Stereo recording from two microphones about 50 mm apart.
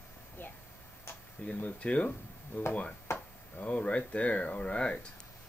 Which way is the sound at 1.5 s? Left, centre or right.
Left.